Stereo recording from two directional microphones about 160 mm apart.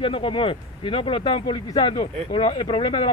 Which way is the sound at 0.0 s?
35° left (ahead or behind).